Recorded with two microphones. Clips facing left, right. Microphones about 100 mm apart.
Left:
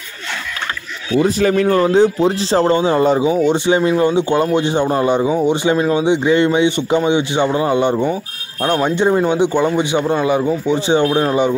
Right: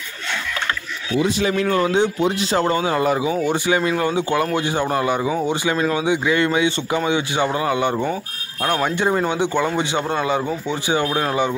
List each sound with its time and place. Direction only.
1.1 s speech: 45° left (ahead or behind); by 11.5 s 20° left (ahead or behind)